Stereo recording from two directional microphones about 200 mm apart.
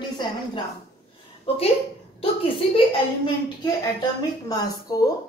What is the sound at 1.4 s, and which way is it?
A woman's voice, 30° left (ahead or behind).